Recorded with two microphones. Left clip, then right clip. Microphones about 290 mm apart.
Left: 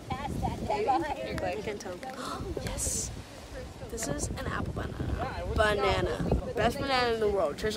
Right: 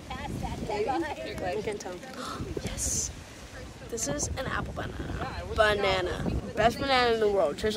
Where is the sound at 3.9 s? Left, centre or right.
Centre.